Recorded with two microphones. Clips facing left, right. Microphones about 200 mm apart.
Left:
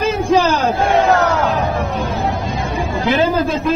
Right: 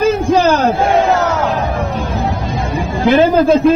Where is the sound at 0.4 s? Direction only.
50° right (ahead or behind).